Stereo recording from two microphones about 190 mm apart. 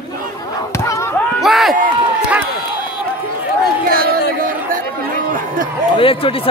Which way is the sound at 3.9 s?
50° right (ahead or behind).